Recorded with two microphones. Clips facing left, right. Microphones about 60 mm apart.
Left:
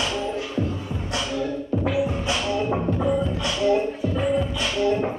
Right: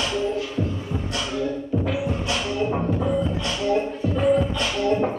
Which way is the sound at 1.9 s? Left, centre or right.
Centre.